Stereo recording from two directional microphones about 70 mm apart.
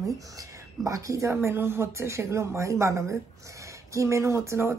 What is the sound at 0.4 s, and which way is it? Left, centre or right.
A woman's voice, right.